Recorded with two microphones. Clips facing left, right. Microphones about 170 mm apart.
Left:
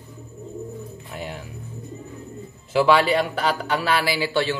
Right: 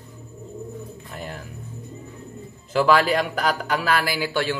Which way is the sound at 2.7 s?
5° left (ahead or behind).